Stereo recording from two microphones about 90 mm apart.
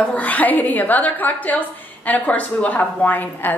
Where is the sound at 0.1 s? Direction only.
15° left (ahead or behind).